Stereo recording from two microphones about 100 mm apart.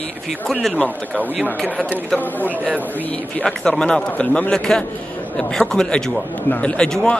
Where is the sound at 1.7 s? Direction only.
15° right (ahead or behind).